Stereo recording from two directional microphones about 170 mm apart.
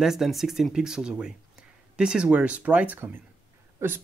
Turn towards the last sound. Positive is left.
turn(degrees=-15)  # may be behind; listen again after turning